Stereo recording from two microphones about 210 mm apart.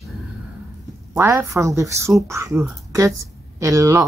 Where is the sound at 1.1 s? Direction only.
15° right (ahead or behind).